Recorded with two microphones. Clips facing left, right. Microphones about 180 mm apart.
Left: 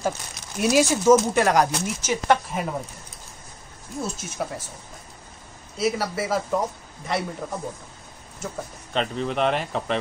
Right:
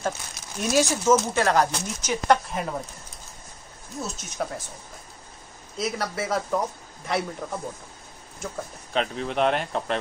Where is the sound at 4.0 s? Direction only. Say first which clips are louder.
Left 1 dB; 5° left (ahead or behind).